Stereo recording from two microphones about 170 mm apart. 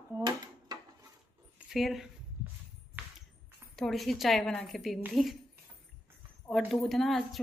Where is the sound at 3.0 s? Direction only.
10° right (ahead or behind).